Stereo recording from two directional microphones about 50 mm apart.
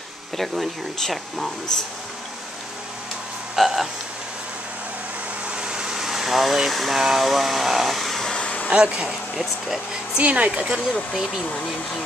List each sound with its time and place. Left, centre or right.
0.4 s speech: centre
3.5 s frog: centre
5.5 s a sound: centre
8.2 s hair dryer: centre
8.6 s speech: centre
9.3 s speech: centre
10.1 s speech: right
10.7 s speech: centre